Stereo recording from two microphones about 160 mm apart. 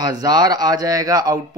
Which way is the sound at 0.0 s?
25° right (ahead or behind).